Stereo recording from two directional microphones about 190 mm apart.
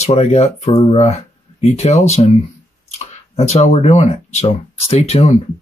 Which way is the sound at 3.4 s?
35° left (ahead or behind).